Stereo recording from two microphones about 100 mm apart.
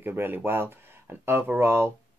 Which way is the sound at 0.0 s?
20° right (ahead or behind).